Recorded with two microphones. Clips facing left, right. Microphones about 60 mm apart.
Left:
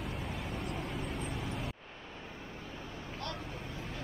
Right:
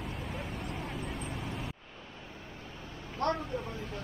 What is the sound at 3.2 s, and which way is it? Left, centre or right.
Vehicle, right.